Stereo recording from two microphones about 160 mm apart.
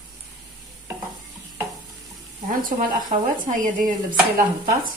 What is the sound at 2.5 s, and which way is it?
Stir, 60° right (ahead or behind).